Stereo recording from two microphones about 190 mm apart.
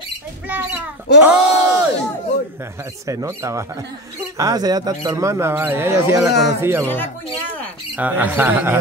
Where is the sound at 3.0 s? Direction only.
15° right (ahead or behind).